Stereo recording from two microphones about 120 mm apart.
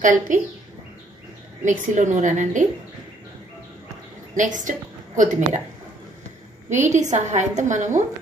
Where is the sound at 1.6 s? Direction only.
90° right.